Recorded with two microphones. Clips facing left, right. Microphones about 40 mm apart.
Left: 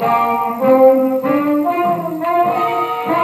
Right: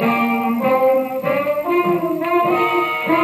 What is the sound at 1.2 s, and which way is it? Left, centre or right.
Brass instrument, centre.